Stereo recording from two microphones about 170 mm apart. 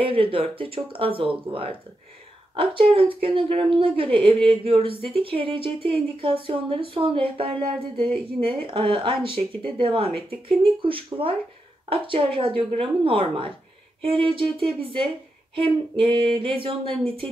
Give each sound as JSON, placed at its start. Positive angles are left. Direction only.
{"t": 0.0, "sound": "speech", "side_deg": -30}